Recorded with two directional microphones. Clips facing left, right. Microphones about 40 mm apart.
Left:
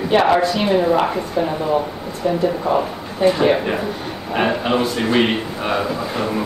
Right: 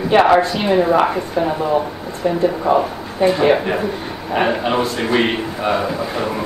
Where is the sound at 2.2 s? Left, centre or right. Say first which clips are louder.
Right 1 dB; right.